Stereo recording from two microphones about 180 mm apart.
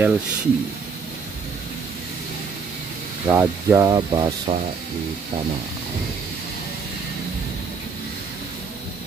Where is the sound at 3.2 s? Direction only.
15° right (ahead or behind).